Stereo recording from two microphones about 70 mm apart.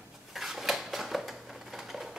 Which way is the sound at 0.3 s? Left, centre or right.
Centre.